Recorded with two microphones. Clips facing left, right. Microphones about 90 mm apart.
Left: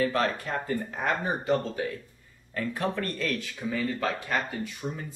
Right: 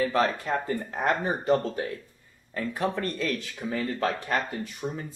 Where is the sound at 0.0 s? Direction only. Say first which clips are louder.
Right 2 dB; 25° right (ahead or behind).